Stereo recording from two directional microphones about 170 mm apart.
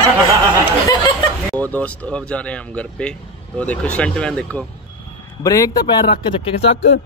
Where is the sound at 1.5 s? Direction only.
10° left (ahead or behind).